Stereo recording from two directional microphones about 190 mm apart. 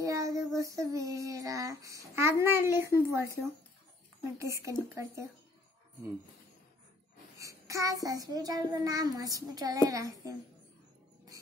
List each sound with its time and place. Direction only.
0.0 s child singing: 15° right (ahead or behind)
3.1 s a woman's voice: 15° right (ahead or behind)
7.3 s child singing: 15° right (ahead or behind)